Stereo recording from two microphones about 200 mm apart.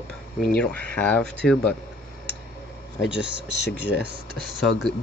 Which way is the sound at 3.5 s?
60° left (ahead or behind).